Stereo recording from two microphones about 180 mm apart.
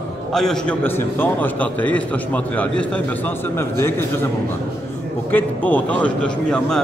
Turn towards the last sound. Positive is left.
turn(degrees=5)  # may be behind; listen again after turning